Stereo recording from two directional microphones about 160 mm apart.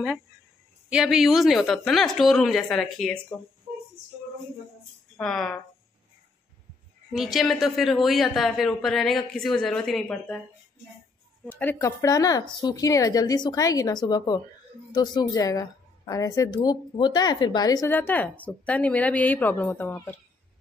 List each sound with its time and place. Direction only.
0.8 s a woman's voice: 5° right (ahead or behind)
5.1 s a woman's voice: 5° left (ahead or behind)
7.1 s a woman's voice: centre (ahead or behind)
11.4 s a woman's voice: 10° left (ahead or behind)
17.9 s a woman's voice: 10° left (ahead or behind)